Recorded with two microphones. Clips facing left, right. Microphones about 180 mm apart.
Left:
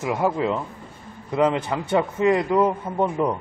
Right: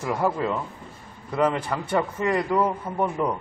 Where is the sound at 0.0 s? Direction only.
15° left (ahead or behind).